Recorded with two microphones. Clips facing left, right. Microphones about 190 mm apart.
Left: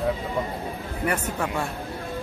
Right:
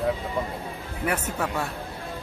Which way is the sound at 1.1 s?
5° right (ahead or behind).